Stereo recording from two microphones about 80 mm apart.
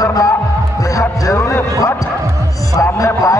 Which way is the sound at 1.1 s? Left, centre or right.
Left.